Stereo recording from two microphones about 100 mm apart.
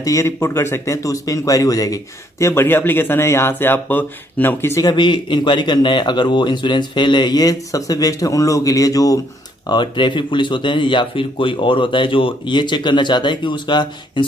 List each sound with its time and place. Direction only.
0.0 s speech: 30° left (ahead or behind)
4.8 s speech: 50° left (ahead or behind); by 9.2 s 35° left (ahead or behind)
9.7 s speech: 50° left (ahead or behind)